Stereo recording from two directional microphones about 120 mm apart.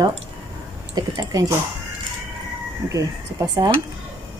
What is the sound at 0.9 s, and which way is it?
Speech, 30° right (ahead or behind).